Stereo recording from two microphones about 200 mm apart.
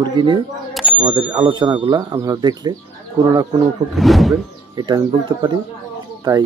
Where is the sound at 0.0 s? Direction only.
20° right (ahead or behind).